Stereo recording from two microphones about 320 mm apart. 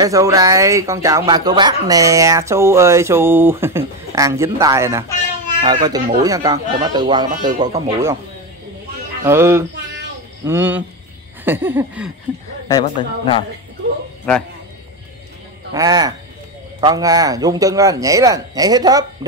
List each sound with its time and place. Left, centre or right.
0.0 s speech: centre
9.2 s speech: centre
12.8 s a man's voice: centre
15.7 s speech: centre